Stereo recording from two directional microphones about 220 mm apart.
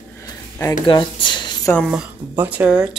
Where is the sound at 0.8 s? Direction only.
20° left (ahead or behind).